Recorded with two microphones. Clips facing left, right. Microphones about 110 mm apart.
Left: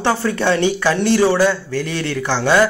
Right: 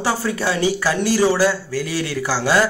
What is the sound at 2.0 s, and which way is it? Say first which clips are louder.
Speech: left 2 dB; 10° right (ahead or behind).